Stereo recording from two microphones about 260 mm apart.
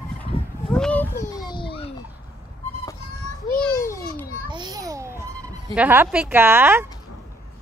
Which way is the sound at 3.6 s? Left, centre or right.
Centre.